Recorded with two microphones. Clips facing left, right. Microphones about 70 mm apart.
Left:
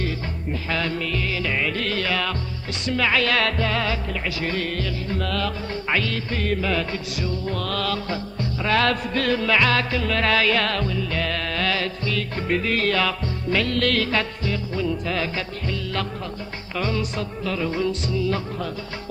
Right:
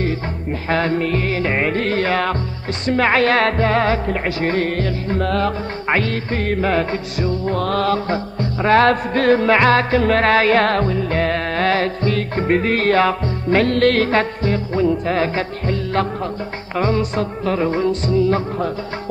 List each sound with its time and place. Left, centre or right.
0.7 s music: right
2.9 s speech: right